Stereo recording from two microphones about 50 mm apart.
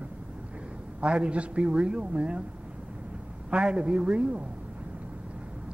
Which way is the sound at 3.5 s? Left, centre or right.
Right.